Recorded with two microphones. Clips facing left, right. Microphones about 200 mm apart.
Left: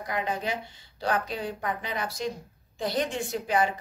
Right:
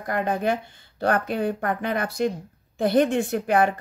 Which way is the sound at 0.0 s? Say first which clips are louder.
Right 6 dB; 55° right (ahead or behind).